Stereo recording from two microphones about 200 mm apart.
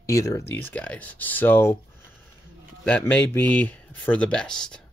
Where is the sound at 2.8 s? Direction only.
10° left (ahead or behind).